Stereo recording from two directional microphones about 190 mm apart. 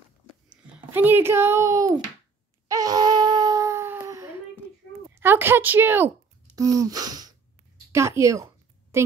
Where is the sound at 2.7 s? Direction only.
20° right (ahead or behind).